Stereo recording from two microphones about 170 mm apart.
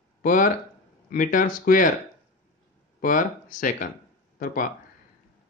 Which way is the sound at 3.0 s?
50° left (ahead or behind).